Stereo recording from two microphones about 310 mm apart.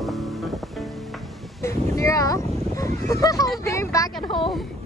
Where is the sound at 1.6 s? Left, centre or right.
Centre.